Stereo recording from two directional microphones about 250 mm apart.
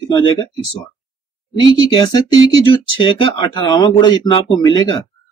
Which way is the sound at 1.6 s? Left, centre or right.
Centre.